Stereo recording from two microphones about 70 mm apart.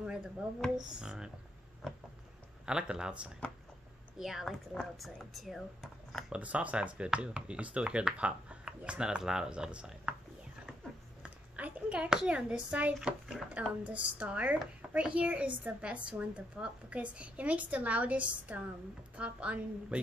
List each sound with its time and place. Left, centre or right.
0.0 s a sound: centre
1.0 s speech: centre
2.6 s speech: centre
6.3 s speech: centre
11.5 s a woman's voice: centre